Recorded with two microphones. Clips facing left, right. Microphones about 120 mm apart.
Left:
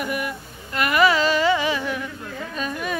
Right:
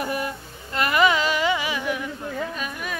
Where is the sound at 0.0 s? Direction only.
30° right (ahead or behind).